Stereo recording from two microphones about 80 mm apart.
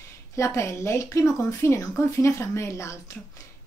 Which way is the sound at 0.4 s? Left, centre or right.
Left.